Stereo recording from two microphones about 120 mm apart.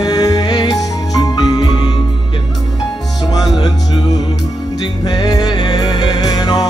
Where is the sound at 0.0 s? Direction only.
35° left (ahead or behind).